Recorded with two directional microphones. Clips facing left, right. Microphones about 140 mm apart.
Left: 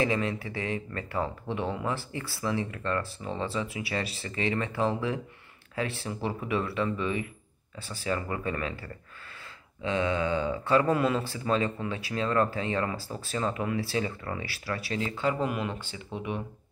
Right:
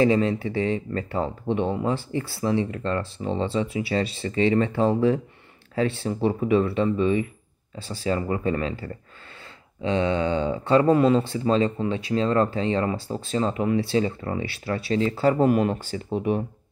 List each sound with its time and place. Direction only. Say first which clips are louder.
0.0 s speech: right 8 dB; 30° right (ahead or behind)